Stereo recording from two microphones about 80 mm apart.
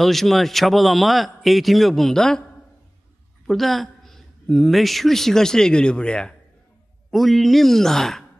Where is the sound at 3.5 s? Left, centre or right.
Centre.